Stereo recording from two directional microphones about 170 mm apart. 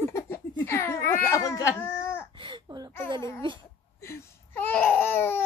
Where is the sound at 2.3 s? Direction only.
30° right (ahead or behind).